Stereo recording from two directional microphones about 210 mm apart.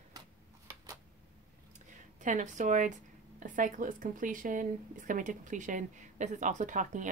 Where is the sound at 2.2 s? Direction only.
35° right (ahead or behind).